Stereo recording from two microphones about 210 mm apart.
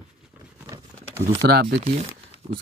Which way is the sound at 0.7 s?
15° right (ahead or behind).